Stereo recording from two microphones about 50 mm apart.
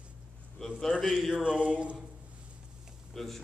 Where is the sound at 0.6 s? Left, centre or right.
Centre.